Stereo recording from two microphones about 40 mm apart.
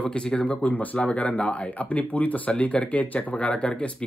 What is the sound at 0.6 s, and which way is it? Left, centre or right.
Speech, left.